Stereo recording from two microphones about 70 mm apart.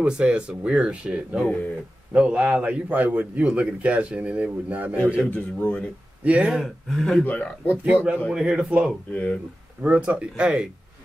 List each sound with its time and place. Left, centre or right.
0.0 s a man's voice: centre
5.3 s speech: left
6.2 s a man's voice: centre
6.6 s speech: centre
7.2 s speech: left
7.8 s a man's voice: right
9.1 s speech: centre
9.8 s a man's voice: centre